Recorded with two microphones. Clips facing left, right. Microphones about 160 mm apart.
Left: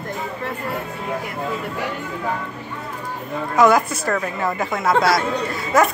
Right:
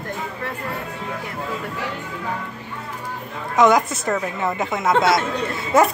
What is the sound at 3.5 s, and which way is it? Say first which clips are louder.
A woman's voice: even; 20° right (ahead or behind).